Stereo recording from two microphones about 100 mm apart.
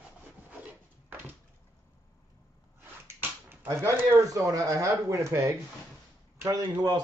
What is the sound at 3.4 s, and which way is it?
Speech, 30° right (ahead or behind).